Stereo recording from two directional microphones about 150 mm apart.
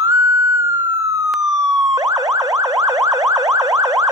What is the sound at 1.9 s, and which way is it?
Car alarm, 25° right (ahead or behind).